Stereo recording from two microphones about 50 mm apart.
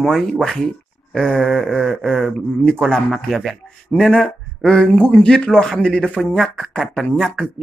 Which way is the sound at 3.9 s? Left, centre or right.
Centre.